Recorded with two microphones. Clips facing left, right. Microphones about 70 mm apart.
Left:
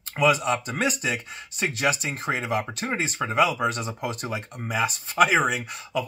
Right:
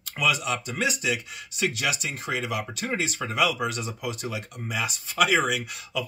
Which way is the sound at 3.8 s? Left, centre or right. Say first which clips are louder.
Left 2 dB; left.